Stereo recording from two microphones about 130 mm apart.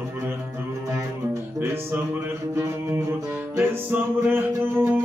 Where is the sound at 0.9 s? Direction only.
20° right (ahead or behind).